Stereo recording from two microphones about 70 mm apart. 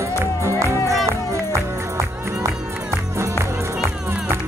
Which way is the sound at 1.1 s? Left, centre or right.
Right.